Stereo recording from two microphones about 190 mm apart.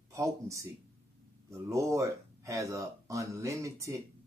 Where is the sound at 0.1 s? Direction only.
15° right (ahead or behind).